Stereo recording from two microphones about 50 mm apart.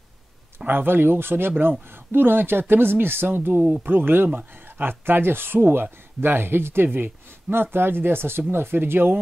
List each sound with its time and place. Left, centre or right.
0.7 s speech: right